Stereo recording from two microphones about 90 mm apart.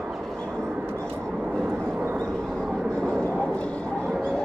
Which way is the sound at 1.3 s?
10° right (ahead or behind).